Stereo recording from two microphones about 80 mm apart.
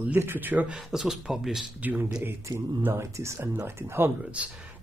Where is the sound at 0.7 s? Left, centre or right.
Centre.